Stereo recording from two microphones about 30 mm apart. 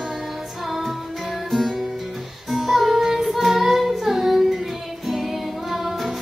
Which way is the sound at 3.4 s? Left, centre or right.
Centre.